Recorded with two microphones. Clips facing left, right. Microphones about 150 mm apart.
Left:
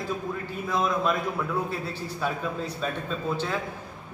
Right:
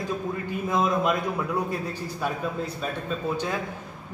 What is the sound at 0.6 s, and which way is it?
Speech, 20° right (ahead or behind).